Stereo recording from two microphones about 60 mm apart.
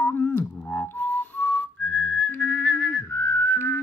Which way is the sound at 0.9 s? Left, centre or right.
Left.